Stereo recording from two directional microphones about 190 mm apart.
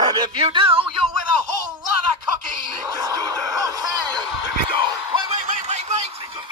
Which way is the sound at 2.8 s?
20° right (ahead or behind).